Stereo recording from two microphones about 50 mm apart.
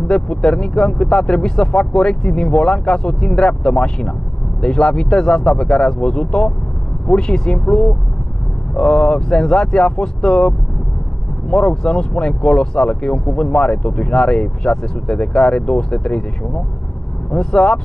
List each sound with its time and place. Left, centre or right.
0.1 s speech: centre